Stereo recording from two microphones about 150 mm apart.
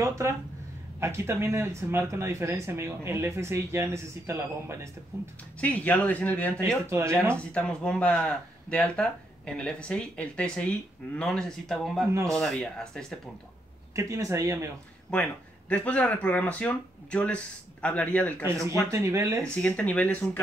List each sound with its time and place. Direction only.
0.0 s speech: 20° right (ahead or behind)
5.6 s speech: 10° left (ahead or behind)
6.9 s speech: 15° right (ahead or behind)
7.3 s speech: 5° left (ahead or behind)
12.1 s speech: 20° right (ahead or behind)
12.4 s speech: 5° left (ahead or behind)
13.9 s speech: 20° right (ahead or behind)
15.1 s speech: 5° left (ahead or behind)
18.7 s speech: 20° right (ahead or behind)
19.4 s speech: 10° left (ahead or behind)